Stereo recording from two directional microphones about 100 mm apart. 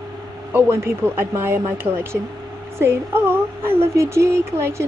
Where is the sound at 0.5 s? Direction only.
25° right (ahead or behind).